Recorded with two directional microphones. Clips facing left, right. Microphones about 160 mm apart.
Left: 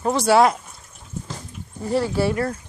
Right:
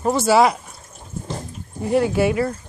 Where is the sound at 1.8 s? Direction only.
15° right (ahead or behind).